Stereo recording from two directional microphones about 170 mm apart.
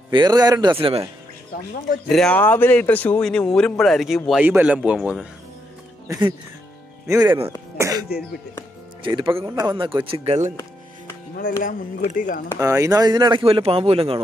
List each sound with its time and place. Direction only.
0.1 s a man's voice: 25° right (ahead or behind)
2.0 s a man's voice: 5° left (ahead or behind)
6.1 s a man's voice: 20° right (ahead or behind)
7.7 s throat clearing: 15° right (ahead or behind)
9.0 s speech: 30° right (ahead or behind)
9.3 s a man's voice: 15° right (ahead or behind)
9.7 s speech: 30° right (ahead or behind)
10.5 s music: 15° left (ahead or behind)
11.6 s speech: 55° left (ahead or behind)
12.5 s a man's voice: 20° right (ahead or behind)